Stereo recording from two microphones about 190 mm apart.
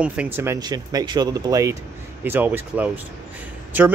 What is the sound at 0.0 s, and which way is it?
A man's voice, 5° right (ahead or behind).